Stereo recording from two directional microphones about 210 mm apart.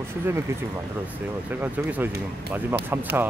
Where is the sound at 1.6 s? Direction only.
10° right (ahead or behind).